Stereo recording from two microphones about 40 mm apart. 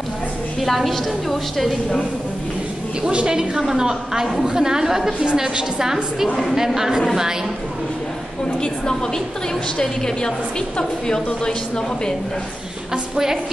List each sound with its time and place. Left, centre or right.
0.6 s a woman's voice: centre
3.0 s a woman's voice: right
8.5 s a woman's voice: centre
12.9 s a woman's voice: centre